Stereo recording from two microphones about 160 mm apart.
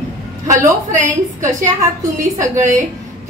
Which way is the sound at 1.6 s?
20° right (ahead or behind).